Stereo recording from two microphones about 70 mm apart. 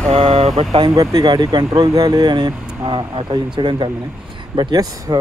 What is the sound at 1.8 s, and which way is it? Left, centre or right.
Speech, right.